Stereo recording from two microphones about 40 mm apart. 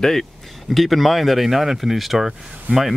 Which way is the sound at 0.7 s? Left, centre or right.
Centre.